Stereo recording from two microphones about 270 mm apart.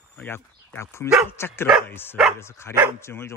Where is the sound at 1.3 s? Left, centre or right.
Centre.